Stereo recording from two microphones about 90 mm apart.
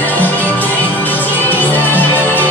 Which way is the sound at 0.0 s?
20° left (ahead or behind).